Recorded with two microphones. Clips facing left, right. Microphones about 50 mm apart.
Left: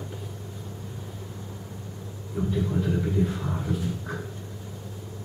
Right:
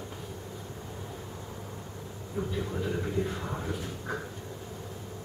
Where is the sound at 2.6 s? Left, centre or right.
Centre.